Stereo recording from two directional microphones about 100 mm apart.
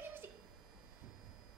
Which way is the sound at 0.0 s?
20° right (ahead or behind).